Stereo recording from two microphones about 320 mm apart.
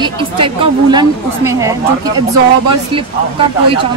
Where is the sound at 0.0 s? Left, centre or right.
Centre.